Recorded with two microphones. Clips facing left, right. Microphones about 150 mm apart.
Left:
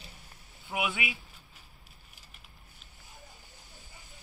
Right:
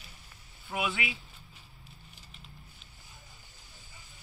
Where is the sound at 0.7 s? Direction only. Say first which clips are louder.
Even; 15° left (ahead or behind).